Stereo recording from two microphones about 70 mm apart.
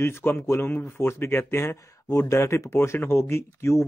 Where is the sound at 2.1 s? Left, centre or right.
Left.